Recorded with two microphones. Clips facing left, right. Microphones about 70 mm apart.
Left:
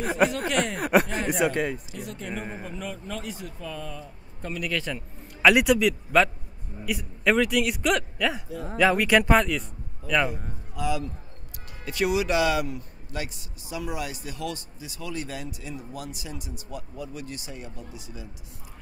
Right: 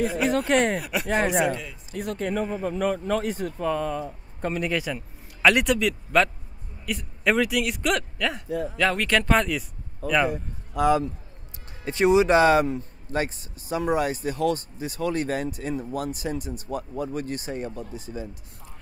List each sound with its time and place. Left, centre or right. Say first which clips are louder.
0.0 s speech: even; left
1.0 s speech: right 3 dB; right
1.5 s speech: left 5 dB; left
1.9 s speech: right 7 dB; right
4.7 s a man's voice: right 2 dB; centre
5.5 s a man's voice: left 2 dB; centre
10.3 s a man's voice: right 7 dB; right
11.8 s speech: right 6 dB; right